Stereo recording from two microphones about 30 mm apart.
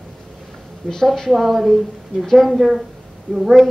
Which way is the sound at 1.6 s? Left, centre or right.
Centre.